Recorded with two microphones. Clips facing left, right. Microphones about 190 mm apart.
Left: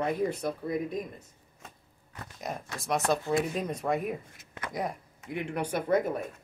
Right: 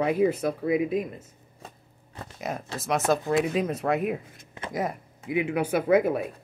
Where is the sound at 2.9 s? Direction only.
90° right.